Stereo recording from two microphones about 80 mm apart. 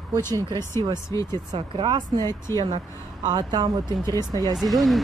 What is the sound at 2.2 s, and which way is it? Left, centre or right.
Speech, left.